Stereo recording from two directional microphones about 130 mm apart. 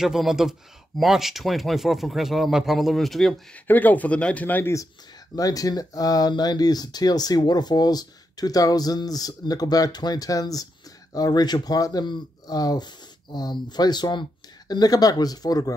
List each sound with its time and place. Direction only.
0.0 s speech: 5° right (ahead or behind)
3.6 s speech: 15° left (ahead or behind)
5.3 s speech: 25° left (ahead or behind)